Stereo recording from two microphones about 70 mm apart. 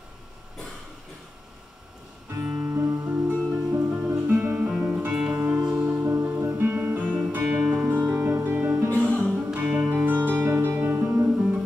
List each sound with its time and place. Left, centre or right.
2.4 s music: centre
2.7 s music: right
7.4 s music: centre
7.9 s music: right
8.9 s music: centre
9.3 s music: centre
10.3 s music: right
10.9 s music: right
11.2 s music: centre